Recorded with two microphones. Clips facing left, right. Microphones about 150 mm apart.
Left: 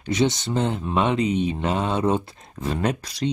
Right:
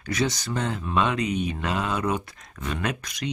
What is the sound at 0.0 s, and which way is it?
Speech, 25° left (ahead or behind).